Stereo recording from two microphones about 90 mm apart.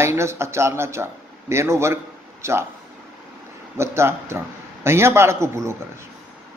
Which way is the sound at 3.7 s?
30° right (ahead or behind).